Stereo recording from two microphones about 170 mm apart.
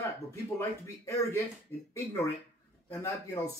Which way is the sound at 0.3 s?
15° left (ahead or behind).